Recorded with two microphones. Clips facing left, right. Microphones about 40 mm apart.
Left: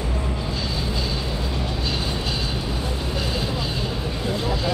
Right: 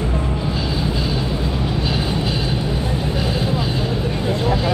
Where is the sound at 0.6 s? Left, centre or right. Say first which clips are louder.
Right 5 dB; centre.